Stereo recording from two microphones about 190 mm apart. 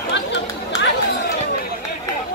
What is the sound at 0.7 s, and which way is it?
Run, 60° left (ahead or behind).